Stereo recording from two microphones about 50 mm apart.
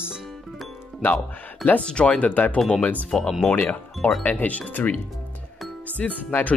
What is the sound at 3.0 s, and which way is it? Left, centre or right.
Speech, centre.